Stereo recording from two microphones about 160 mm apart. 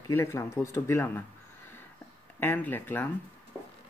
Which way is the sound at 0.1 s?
15° left (ahead or behind).